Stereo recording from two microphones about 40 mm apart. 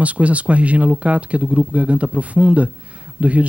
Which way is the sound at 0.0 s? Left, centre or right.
Right.